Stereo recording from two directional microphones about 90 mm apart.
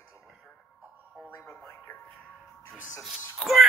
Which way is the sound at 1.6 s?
30° left (ahead or behind).